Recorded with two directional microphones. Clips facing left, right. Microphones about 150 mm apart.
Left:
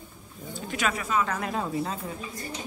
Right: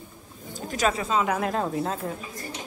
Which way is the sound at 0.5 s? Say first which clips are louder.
Right 4 dB; 40° right (ahead or behind).